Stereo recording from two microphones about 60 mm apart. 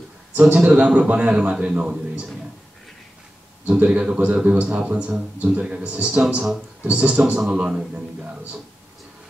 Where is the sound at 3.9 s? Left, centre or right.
Centre.